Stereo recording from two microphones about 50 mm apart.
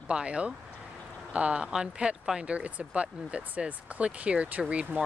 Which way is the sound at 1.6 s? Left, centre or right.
Centre.